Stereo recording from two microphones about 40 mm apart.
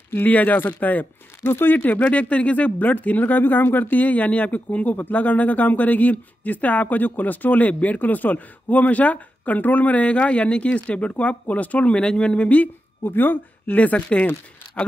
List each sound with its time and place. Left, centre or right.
0.1 s speech: left
1.4 s speech: left
1.8 s speech: left
13.0 s speech: left